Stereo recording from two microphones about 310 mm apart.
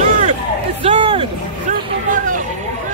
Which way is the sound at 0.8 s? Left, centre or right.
Centre.